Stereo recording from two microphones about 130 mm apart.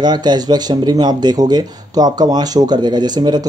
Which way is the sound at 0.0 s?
35° right (ahead or behind).